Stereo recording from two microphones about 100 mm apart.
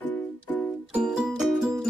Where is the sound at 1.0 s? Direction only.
5° right (ahead or behind).